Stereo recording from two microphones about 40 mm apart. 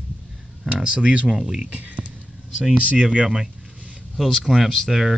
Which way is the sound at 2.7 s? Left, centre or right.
Right.